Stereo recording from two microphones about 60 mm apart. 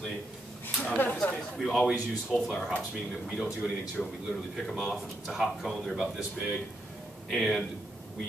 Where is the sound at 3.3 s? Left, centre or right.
Centre.